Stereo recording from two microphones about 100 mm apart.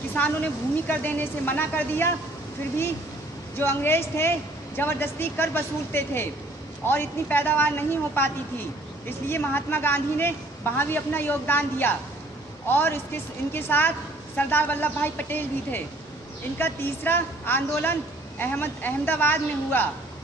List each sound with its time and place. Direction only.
0.1 s a woman's voice: 15° left (ahead or behind)
3.5 s a woman's voice: 25° left (ahead or behind)
9.3 s a woman's voice: 20° left (ahead or behind)